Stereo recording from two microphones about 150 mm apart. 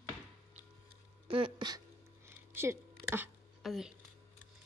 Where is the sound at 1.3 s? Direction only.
35° right (ahead or behind); by 3.3 s 15° right (ahead or behind).